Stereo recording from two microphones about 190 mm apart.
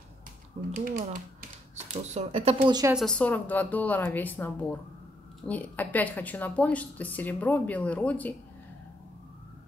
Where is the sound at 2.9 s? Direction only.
5° left (ahead or behind).